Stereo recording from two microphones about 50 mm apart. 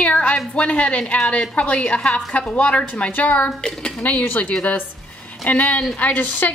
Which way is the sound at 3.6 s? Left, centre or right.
Centre.